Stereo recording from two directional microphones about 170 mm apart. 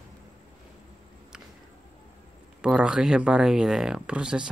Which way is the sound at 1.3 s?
5° right (ahead or behind).